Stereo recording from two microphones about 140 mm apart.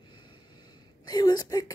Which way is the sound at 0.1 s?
30° left (ahead or behind).